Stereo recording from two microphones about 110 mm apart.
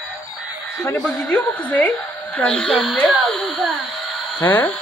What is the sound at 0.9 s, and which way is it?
Speech, 10° left (ahead or behind).